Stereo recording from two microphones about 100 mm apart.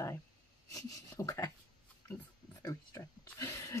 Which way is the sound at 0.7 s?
35° left (ahead or behind).